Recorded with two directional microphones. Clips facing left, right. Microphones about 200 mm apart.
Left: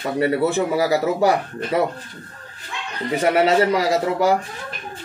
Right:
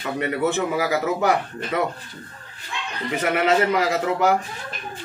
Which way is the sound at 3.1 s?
35° left (ahead or behind).